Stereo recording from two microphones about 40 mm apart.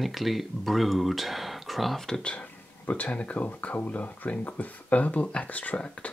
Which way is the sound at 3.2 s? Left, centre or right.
Left.